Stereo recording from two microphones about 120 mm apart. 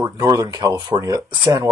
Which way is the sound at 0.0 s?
30° right (ahead or behind).